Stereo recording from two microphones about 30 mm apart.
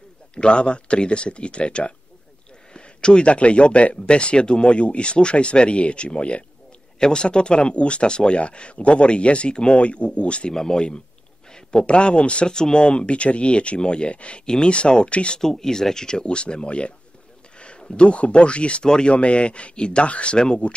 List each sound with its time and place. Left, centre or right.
0.3 s speech: left
10.5 s a man's voice: left
12.4 s speech: left
14.4 s speech: left
15.0 s speech: left
15.4 s speech: centre; by 20.1 s left
20.1 s speech: left
20.3 s speech: left